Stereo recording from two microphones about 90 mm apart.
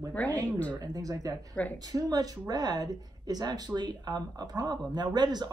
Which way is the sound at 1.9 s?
45° right (ahead or behind).